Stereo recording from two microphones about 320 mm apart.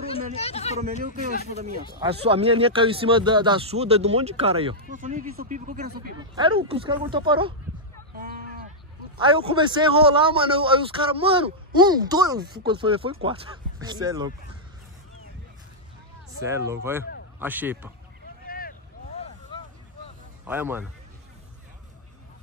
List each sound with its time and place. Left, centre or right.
0.1 s speech: centre
1.1 s speech: right
6.1 s speech: centre
9.2 s speech: centre
16.3 s speech: centre
18.5 s vehicle: left
19.5 s vehicle: centre
20.4 s speech: centre